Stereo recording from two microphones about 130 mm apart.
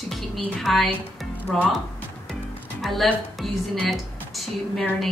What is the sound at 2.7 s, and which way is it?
A woman's voice, centre (ahead or behind).